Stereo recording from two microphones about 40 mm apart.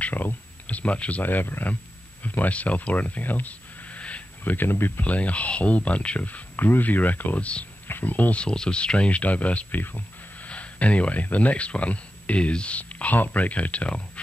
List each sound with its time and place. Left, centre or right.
0.1 s speech: left
0.7 s a sound: left
0.9 s speech: left
1.2 s speech: left
4.5 s speech: left
4.7 s speech: left
5.0 s speech: left
6.5 s speech: left
7.3 s speech: left
8.4 s speech: left
9.7 s a sound: left
10.5 s a sound: left
11.3 s speech: left